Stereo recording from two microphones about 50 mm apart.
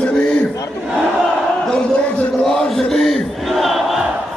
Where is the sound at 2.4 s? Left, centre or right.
Centre.